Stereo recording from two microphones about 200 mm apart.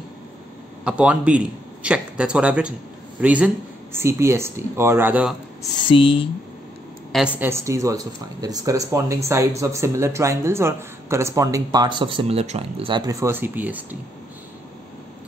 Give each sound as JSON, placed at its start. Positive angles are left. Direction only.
{"t": 0.8, "sound": "a man's voice", "side_deg": -5}
{"t": 5.9, "sound": "speech", "side_deg": 25}
{"t": 7.1, "sound": "speech", "side_deg": -5}